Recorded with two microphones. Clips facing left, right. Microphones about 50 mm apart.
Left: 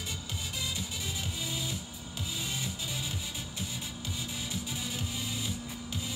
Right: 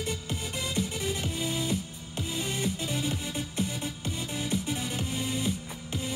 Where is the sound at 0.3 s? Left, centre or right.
Right.